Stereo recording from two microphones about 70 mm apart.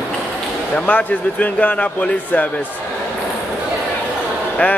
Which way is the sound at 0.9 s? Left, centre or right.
Left.